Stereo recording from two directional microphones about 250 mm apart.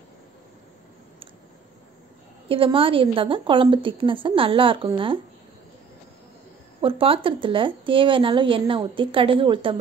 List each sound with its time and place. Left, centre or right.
2.4 s speech: right
6.8 s speech: right